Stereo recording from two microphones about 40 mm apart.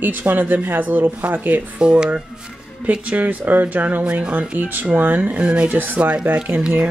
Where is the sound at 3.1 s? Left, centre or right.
Right.